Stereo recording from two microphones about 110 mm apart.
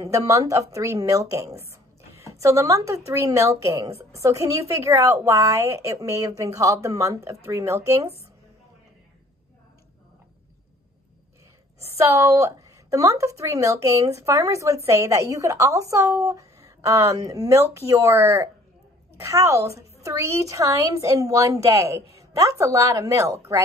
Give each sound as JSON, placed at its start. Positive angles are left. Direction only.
{"t": 0.0, "sound": "a woman's voice", "side_deg": -30}
{"t": 11.8, "sound": "a woman's voice", "side_deg": -25}